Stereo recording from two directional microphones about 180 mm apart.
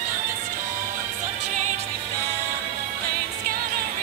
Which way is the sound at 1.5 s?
40° right (ahead or behind).